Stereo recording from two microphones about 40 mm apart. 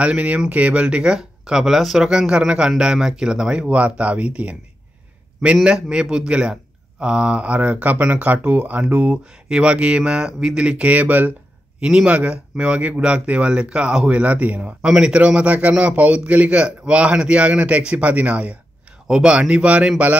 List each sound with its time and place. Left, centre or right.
0.0 s a man's voice: right; by 2.0 s centre
2.0 s speech: centre; by 4.6 s right
5.6 s a man's voice: right
9.1 s speech: right
10.8 s a man's voice: right
11.8 s speech: centre
12.1 s speech: right
14.8 s a man's voice: right